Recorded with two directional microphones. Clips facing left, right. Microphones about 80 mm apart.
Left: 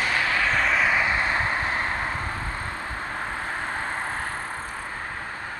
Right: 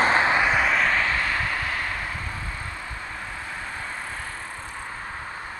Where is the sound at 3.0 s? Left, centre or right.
Left.